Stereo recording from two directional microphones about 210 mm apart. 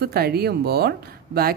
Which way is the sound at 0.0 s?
50° right (ahead or behind).